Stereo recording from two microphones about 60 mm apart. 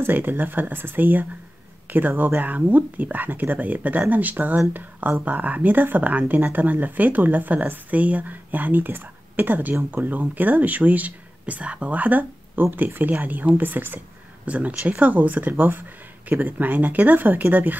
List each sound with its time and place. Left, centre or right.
0.0 s speech: right